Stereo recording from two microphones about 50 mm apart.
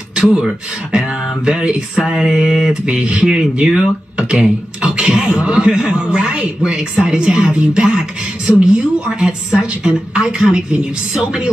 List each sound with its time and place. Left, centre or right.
0.1 s speech: centre
2.7 s speech: centre